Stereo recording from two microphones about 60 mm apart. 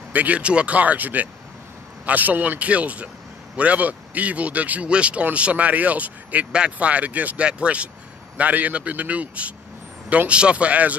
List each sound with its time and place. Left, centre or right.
0.1 s speech: right